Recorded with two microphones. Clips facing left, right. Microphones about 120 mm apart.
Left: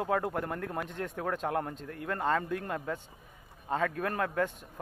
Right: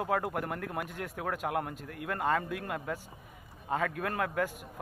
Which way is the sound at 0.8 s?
30° left (ahead or behind).